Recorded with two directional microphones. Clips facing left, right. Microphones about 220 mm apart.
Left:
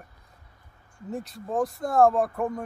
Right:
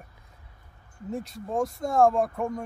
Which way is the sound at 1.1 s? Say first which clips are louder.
Even; centre (ahead or behind).